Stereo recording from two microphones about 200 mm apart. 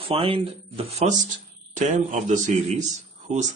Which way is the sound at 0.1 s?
30° right (ahead or behind).